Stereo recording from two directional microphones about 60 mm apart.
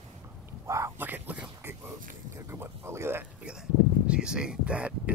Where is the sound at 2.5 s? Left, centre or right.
Right.